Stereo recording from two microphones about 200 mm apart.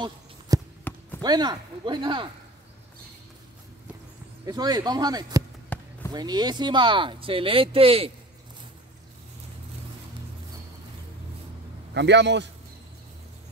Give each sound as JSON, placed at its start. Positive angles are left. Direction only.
{"t": 0.5, "sound": "a sound", "side_deg": -15}
{"t": 0.9, "sound": "basketball bounce", "side_deg": 10}
{"t": 1.2, "sound": "speech", "side_deg": -20}
{"t": 4.5, "sound": "speech", "side_deg": -20}
{"t": 5.7, "sound": "basketball bounce", "side_deg": 10}
{"t": 6.1, "sound": "speech", "side_deg": -20}
{"t": 11.9, "sound": "a man's voice", "side_deg": -60}